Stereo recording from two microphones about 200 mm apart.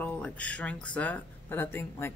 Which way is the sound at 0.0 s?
5° left (ahead or behind).